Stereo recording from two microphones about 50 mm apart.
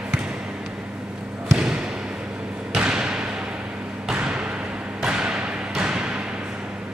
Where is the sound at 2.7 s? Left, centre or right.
Centre.